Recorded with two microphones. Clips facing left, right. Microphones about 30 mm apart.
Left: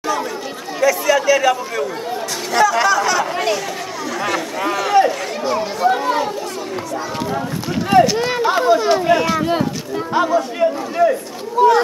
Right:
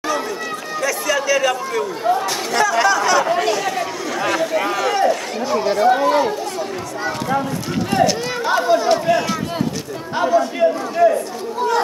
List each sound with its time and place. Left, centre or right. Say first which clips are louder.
0.7 s chatter: left 5 dB; centre
2.5 s speech: left 2 dB; centre
4.1 s chatter: right 3 dB; centre
7.9 s a man's voice: left 5 dB; centre
11.6 s speech: left 9 dB; centre